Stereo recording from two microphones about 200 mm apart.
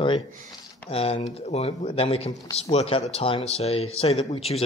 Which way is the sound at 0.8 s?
30° left (ahead or behind).